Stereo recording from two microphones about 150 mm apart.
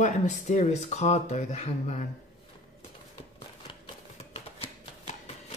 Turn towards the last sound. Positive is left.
turn(degrees=40)  # may be behind; listen again after turning